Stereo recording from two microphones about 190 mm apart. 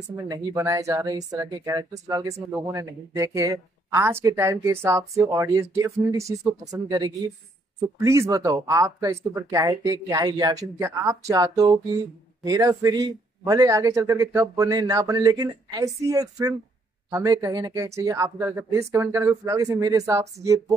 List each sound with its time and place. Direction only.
0.1 s speech: 15° right (ahead or behind)